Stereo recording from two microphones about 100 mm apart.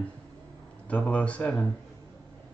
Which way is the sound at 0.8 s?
15° left (ahead or behind).